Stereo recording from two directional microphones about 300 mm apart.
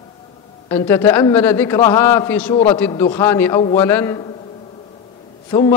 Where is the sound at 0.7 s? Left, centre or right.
Centre.